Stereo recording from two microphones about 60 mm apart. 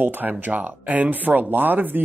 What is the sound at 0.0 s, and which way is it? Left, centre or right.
Speech, right.